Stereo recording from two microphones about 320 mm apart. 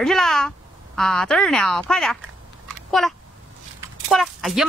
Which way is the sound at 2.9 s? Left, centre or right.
Centre.